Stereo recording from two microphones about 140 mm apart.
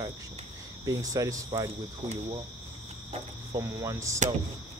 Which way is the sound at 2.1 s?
40° right (ahead or behind).